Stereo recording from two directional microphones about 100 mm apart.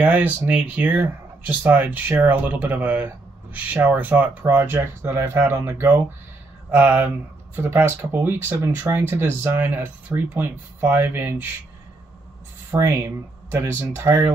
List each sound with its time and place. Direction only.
0.0 s speech: 15° right (ahead or behind)
12.7 s speech: 20° right (ahead or behind)